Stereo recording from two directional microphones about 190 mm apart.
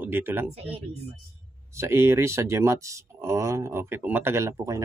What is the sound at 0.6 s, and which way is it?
Speech, 30° right (ahead or behind).